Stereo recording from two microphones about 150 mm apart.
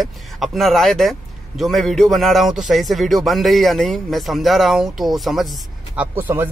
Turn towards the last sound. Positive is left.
turn(degrees=-15)  # may be behind; listen again after turning